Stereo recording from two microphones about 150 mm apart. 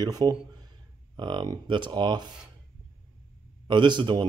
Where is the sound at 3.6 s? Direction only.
30° right (ahead or behind).